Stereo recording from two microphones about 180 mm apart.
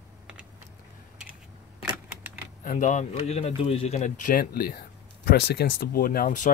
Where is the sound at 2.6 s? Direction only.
45° left (ahead or behind).